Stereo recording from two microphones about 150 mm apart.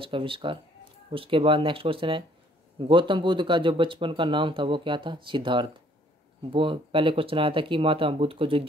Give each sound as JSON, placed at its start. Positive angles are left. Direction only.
{"t": 0.0, "sound": "speech", "side_deg": -35}